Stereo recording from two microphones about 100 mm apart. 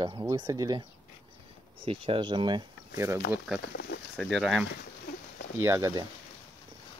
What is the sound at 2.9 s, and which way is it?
Speech, 25° right (ahead or behind).